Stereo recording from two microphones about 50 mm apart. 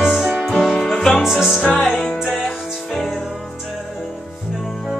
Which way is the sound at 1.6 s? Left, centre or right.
Left.